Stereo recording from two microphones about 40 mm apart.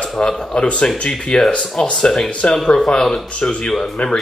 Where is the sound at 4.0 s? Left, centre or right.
Left.